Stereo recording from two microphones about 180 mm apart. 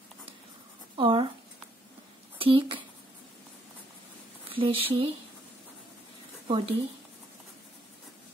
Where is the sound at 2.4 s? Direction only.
30° right (ahead or behind).